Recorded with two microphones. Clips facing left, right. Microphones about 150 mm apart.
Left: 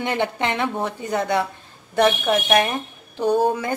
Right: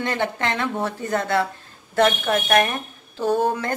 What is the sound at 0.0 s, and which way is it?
A woman's voice, 15° left (ahead or behind).